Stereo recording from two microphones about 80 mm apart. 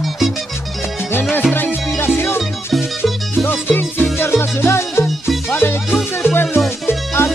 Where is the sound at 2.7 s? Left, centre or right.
Centre.